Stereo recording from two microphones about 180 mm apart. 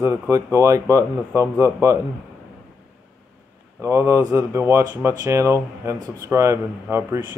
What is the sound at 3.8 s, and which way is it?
Speech, 15° right (ahead or behind).